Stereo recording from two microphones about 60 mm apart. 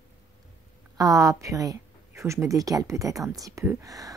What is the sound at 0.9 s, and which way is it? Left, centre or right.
Speech, right.